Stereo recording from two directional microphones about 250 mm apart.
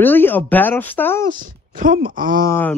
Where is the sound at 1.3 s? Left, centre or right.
Right.